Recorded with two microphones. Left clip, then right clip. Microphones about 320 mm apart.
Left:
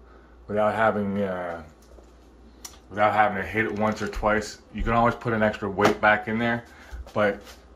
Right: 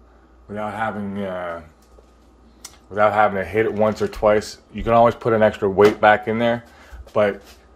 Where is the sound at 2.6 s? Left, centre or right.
Centre.